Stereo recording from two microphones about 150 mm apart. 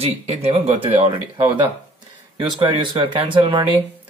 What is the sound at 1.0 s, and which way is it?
Speech, 30° right (ahead or behind).